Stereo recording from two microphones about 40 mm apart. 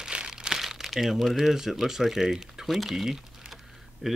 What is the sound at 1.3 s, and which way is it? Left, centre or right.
Speech, centre.